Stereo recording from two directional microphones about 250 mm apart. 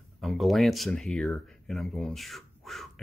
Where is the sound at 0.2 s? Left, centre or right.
Centre.